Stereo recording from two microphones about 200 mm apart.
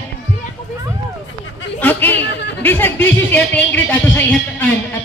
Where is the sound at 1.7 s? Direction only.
10° left (ahead or behind).